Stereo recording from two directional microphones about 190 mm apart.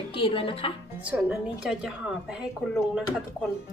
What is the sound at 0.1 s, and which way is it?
Speech, 25° left (ahead or behind).